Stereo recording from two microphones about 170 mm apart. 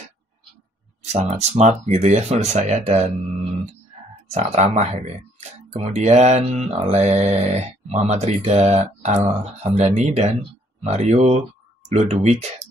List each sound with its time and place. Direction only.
1.0 s mantra: 45° right (ahead or behind)
4.3 s mantra: 40° right (ahead or behind)